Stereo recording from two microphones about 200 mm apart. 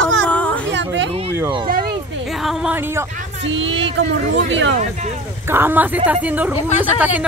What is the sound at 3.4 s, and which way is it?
A woman's voice, 70° right (ahead or behind).